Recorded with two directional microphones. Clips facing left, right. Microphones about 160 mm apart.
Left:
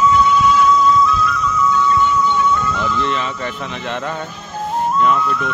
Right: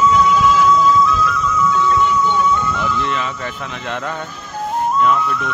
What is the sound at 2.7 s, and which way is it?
Speech, 5° right (ahead or behind).